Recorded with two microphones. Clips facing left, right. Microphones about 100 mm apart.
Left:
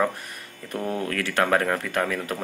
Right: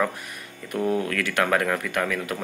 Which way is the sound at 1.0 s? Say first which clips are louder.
Even; 30° left (ahead or behind).